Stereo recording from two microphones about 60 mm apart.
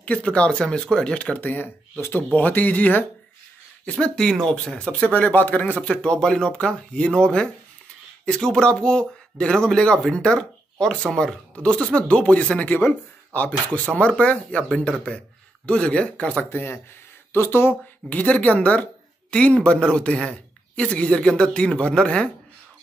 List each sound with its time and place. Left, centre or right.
0.0 s speech: centre
1.4 s speech: left
2.3 s speech: left
4.0 s speech: centre
16.4 s speech: left
18.1 s speech: left